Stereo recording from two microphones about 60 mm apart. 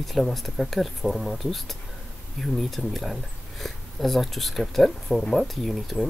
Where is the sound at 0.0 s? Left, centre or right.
Centre.